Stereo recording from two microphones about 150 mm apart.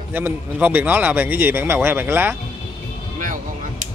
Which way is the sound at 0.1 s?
15° right (ahead or behind).